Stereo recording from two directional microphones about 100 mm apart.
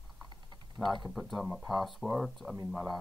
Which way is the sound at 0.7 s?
5° left (ahead or behind).